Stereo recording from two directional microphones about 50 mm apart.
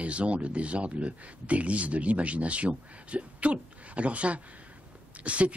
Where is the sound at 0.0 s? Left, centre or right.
Right.